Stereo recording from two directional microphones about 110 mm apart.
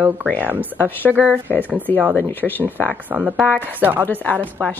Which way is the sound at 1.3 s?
15° left (ahead or behind).